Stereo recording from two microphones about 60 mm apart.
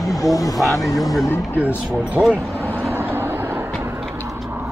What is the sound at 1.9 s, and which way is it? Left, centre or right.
Speech, right.